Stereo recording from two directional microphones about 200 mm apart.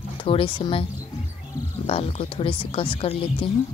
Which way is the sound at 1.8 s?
30° left (ahead or behind).